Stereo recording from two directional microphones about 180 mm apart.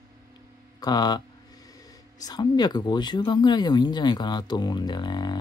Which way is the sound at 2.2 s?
25° left (ahead or behind).